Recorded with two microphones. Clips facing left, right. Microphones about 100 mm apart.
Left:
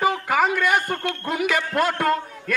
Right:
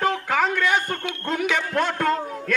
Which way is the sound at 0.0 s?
5° left (ahead or behind).